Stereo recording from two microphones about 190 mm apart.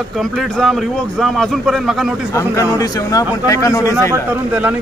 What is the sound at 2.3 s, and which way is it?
Speech, 15° left (ahead or behind).